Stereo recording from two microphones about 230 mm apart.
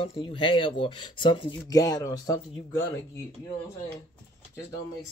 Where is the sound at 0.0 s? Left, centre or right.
Left.